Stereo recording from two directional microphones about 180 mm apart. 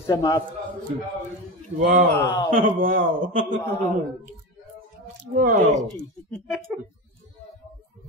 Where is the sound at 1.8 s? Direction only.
45° right (ahead or behind).